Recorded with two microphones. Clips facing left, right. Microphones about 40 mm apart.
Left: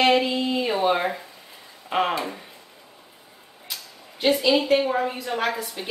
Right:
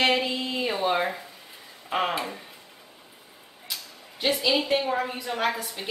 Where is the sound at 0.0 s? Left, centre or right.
Centre.